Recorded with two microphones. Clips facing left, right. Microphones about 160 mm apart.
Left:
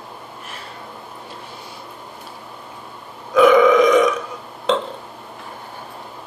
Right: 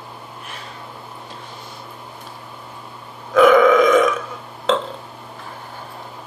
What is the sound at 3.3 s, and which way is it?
Burping, 15° left (ahead or behind).